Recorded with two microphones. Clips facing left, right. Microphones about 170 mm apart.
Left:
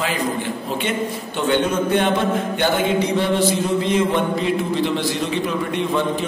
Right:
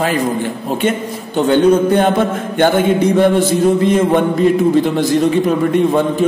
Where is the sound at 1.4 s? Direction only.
40° right (ahead or behind).